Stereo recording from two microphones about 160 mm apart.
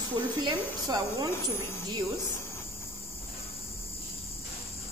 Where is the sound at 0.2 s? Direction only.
25° right (ahead or behind).